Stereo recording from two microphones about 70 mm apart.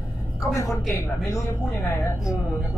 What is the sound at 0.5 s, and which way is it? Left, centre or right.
Speech, left.